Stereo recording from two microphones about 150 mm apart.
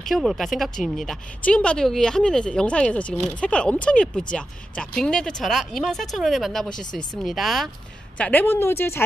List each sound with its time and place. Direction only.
0.0 s speech: centre (ahead or behind)
8.2 s speech: 10° left (ahead or behind)